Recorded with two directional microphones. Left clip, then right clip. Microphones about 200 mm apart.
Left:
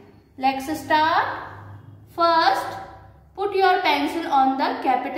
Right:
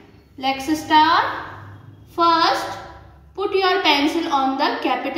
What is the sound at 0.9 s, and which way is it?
A woman's voice, 15° left (ahead or behind).